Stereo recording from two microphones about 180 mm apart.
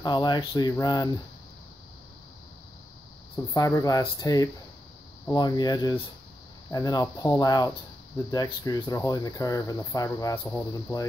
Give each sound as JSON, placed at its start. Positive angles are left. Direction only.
{"t": 0.0, "sound": "speech", "side_deg": 25}
{"t": 3.5, "sound": "speech", "side_deg": 20}